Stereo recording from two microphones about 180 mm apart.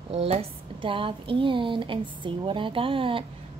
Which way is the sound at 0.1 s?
35° right (ahead or behind).